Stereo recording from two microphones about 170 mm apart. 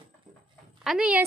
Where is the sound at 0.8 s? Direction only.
5° right (ahead or behind).